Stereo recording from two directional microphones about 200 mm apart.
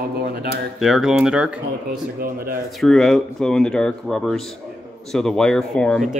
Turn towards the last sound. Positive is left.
turn(degrees=5)  # may be behind; listen again after turning